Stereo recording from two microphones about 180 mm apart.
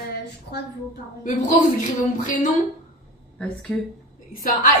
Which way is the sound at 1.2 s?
45° left (ahead or behind).